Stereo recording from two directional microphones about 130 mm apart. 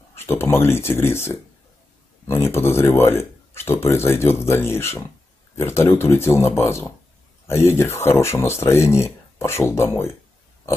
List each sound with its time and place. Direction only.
0.1 s speech: 15° left (ahead or behind)